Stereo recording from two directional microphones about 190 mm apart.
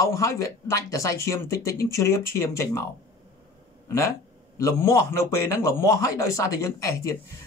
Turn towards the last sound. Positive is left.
turn(degrees=15)  # may be behind; listen again after turning